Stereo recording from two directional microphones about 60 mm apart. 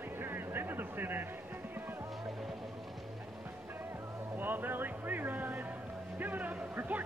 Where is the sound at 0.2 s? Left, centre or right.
Right.